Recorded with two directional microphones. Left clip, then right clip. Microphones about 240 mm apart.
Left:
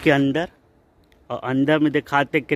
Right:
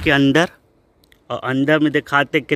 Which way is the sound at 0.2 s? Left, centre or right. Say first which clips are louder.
Right 7 dB; right.